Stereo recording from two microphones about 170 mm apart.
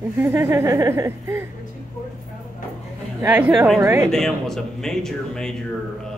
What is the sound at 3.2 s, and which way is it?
Speech, 10° right (ahead or behind).